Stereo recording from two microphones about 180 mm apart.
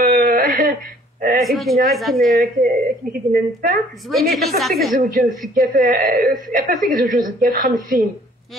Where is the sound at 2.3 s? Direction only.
50° right (ahead or behind).